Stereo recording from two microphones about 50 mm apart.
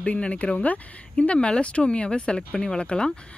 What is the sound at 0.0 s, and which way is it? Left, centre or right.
Speech, left.